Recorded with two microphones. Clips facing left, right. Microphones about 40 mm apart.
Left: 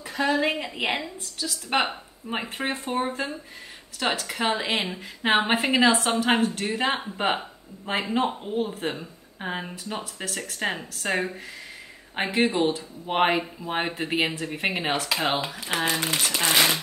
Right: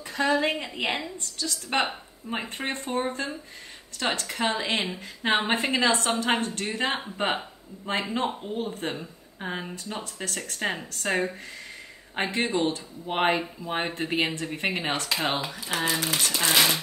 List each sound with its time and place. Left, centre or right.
0.0 s a woman's voice: centre
12.2 s a woman's voice: centre
15.6 s speech: left
16.1 s a woman's voice: centre